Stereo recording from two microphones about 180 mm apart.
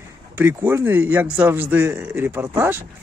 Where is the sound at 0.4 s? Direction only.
10° right (ahead or behind).